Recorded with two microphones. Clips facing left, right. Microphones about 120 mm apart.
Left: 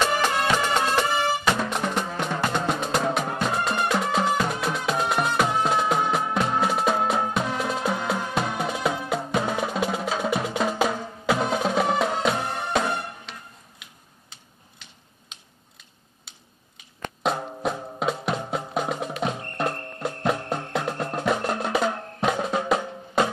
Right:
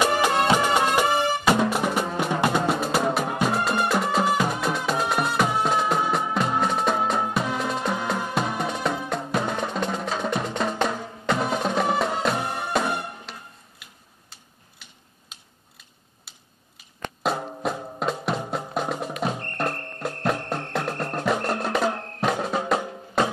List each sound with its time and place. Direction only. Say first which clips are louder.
0.3 s music: right 3 dB; 25° right (ahead or behind)
0.6 s music: right 2 dB; 10° right (ahead or behind)
14.3 s typing: left 1 dB; 5° right (ahead or behind)
15.8 s music: even; 5° right (ahead or behind)
21.9 s drum: even; 5° left (ahead or behind)